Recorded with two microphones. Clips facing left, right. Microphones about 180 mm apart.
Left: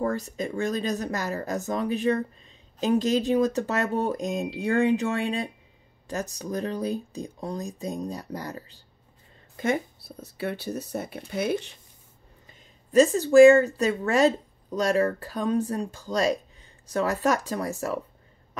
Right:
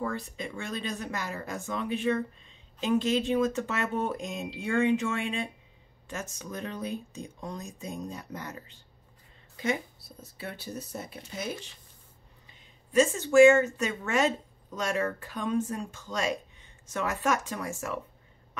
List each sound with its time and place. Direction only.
0.0 s speech: 40° left (ahead or behind)
9.6 s speech: 50° left (ahead or behind)
10.3 s speech: 70° left (ahead or behind)
12.4 s speech: 40° left (ahead or behind)